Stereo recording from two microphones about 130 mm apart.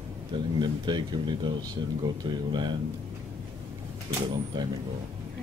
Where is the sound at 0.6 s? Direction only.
35° right (ahead or behind).